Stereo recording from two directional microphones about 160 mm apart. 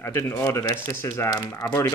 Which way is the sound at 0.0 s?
15° left (ahead or behind).